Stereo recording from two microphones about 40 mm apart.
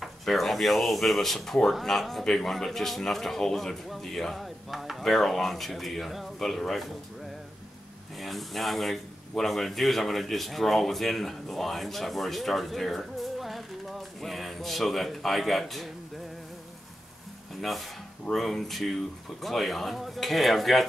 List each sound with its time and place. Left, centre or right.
0.2 s speech: centre
8.2 s speech: centre
17.6 s speech: centre